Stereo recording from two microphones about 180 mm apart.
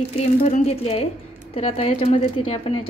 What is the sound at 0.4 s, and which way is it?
A woman's voice, 40° left (ahead or behind).